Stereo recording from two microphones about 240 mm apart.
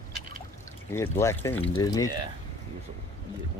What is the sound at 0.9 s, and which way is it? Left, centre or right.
Speech, centre.